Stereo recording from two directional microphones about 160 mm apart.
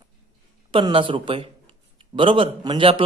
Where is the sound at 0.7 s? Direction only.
30° right (ahead or behind).